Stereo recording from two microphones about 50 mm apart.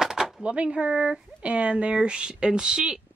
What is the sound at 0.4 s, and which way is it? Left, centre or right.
Speech, right.